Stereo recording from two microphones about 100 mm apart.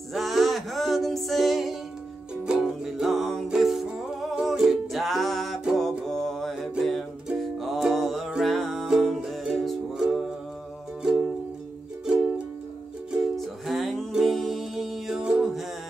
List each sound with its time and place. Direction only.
0.1 s music: centre (ahead or behind)
13.1 s music: centre (ahead or behind)